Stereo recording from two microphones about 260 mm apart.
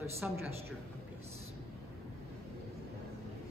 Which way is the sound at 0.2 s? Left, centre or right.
Centre.